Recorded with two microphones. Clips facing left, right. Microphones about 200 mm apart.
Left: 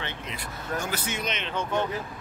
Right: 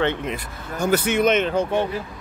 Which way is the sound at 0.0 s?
55° right (ahead or behind).